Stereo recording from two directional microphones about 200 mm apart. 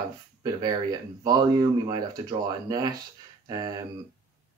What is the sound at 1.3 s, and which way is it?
Speech, 20° right (ahead or behind).